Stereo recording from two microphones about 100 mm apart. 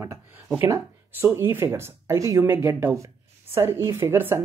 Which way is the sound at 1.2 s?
25° right (ahead or behind).